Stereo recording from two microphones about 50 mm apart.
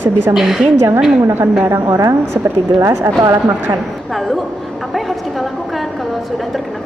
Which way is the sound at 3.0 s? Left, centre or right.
Right.